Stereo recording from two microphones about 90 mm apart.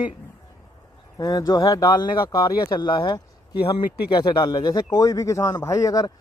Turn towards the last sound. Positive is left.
turn(degrees=40)  # may be behind; listen again after turning